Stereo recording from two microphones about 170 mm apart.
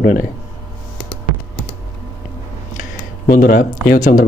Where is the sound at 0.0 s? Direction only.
50° left (ahead or behind).